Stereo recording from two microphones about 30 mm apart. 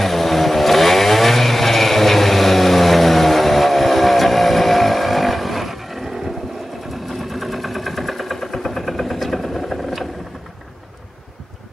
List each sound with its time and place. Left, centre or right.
0.0 s vehicle: centre